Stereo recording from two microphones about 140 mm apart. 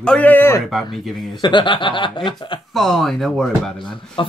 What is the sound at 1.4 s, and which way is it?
Speech, 35° left (ahead or behind).